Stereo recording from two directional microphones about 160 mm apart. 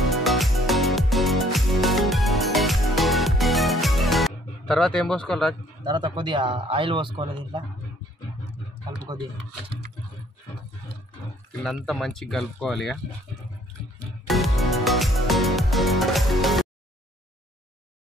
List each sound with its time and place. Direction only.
0.1 s music: centre (ahead or behind)
5.9 s speech: 30° right (ahead or behind)
11.6 s speech: centre (ahead or behind)
14.2 s music: centre (ahead or behind)